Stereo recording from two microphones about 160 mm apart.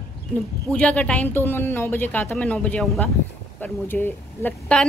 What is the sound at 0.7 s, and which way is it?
A woman's voice, 5° left (ahead or behind).